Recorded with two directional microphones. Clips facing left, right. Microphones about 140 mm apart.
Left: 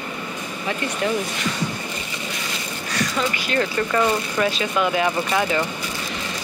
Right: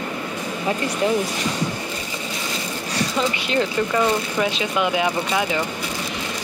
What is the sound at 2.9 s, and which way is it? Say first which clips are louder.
Speech: right 1 dB; 25° right (ahead or behind).